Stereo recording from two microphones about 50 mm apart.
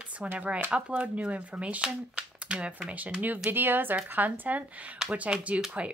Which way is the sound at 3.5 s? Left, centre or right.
Right.